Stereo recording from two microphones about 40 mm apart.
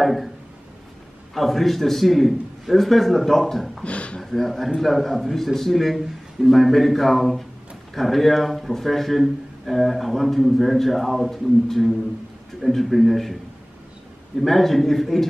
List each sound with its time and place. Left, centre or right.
0.0 s a man's voice: centre
1.3 s a man's voice: centre
3.8 s a sound: left
4.2 s a man's voice: centre
12.6 s a man's voice: centre